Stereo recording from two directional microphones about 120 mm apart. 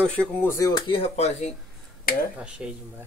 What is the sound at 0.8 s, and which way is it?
Speech, 55° left (ahead or behind).